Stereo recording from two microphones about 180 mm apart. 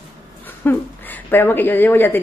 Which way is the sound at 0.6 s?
10° left (ahead or behind).